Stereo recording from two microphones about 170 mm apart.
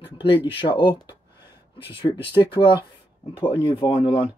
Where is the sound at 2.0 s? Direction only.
25° left (ahead or behind).